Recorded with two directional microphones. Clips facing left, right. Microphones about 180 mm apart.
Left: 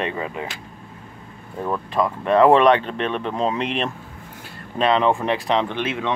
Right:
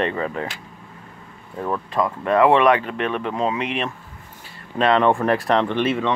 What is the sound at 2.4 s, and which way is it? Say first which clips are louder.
Speech: left 2 dB; 35° left (ahead or behind).